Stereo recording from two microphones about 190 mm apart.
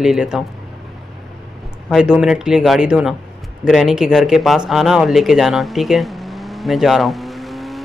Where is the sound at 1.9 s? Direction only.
5° right (ahead or behind).